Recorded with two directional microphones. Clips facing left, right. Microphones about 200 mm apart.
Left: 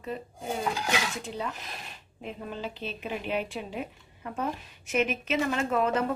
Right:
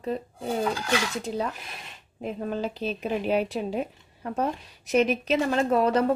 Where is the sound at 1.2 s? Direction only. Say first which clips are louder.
Right 5 dB; 40° right (ahead or behind).